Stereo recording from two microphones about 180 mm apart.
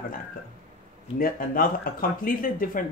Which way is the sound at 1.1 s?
50° left (ahead or behind).